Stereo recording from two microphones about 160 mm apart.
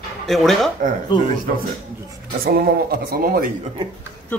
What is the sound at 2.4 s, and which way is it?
Speech, 70° right (ahead or behind).